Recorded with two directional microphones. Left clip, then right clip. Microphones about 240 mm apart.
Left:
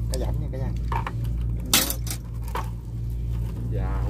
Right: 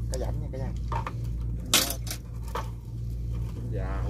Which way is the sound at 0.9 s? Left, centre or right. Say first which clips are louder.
Left 4 dB; centre.